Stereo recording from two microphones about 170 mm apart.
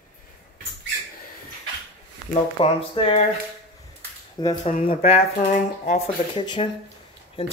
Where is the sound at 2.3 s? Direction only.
35° left (ahead or behind).